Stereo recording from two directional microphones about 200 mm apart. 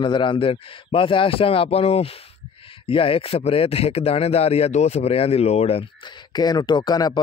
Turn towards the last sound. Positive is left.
turn(degrees=20)  # may be behind; listen again after turning